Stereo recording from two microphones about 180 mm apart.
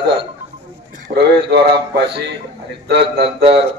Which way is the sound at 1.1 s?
45° right (ahead or behind).